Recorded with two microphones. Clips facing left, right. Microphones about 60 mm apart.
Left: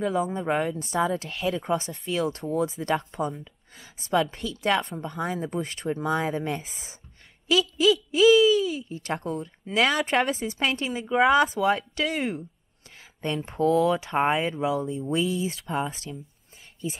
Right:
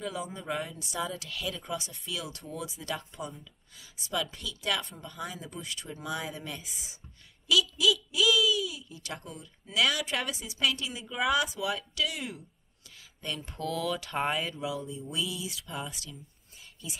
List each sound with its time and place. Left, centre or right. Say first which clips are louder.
0.0 s speech: left 10 dB; left